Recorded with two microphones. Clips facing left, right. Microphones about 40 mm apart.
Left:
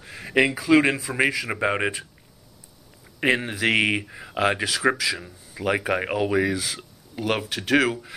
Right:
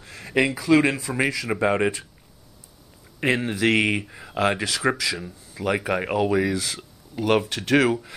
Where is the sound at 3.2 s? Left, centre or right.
Centre.